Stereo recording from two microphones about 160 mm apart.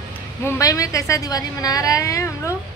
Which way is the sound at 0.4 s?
20° left (ahead or behind).